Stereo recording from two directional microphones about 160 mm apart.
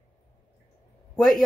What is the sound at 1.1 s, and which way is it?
Speech, centre (ahead or behind).